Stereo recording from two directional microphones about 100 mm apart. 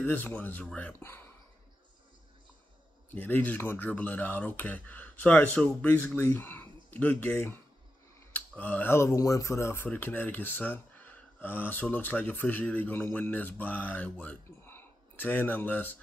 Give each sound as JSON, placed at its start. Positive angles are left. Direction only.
{"t": 0.0, "sound": "speech", "side_deg": 15}
{"t": 3.1, "sound": "speech", "side_deg": 15}